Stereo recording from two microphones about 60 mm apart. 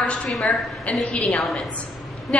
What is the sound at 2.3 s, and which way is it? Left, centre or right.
Speech, centre.